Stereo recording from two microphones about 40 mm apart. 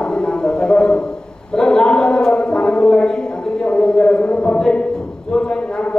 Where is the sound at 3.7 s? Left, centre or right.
Left.